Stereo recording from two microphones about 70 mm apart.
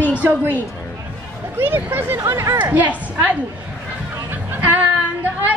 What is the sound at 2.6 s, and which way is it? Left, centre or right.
Speech, right.